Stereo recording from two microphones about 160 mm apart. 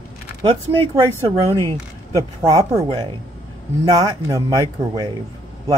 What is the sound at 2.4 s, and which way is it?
Speech, 25° right (ahead or behind).